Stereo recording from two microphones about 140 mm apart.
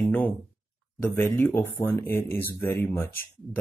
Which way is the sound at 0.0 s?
10° left (ahead or behind).